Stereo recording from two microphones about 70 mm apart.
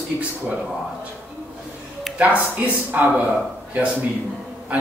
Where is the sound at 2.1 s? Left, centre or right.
Right.